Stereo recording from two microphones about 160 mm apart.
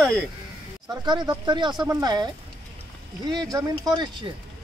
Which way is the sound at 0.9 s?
25° right (ahead or behind).